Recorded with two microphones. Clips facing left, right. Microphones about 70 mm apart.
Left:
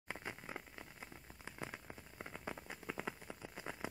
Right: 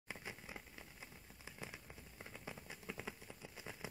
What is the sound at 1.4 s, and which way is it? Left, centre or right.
Rain on surface, left.